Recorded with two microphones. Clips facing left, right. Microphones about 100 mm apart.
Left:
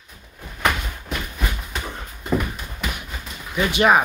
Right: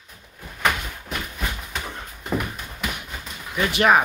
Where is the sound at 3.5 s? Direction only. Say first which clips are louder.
Left 1 dB; 5° left (ahead or behind).